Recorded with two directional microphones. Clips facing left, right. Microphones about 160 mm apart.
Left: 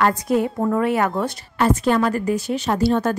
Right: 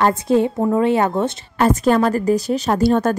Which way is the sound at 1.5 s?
40° right (ahead or behind).